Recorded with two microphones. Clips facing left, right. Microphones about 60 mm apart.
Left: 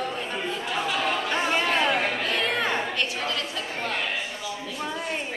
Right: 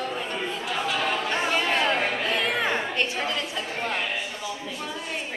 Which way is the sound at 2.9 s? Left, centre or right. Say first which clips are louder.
Right 1 dB; right.